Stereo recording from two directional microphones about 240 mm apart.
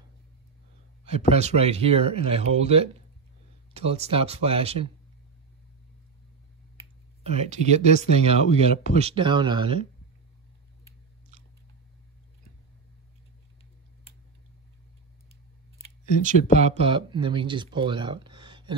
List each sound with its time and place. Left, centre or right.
1.3 s speech: right
7.2 s speech: right
16.5 s speech: right